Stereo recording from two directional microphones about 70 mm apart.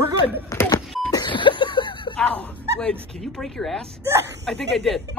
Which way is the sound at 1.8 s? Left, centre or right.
Left.